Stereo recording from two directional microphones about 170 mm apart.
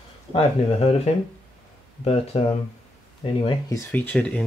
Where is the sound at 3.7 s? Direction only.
15° left (ahead or behind).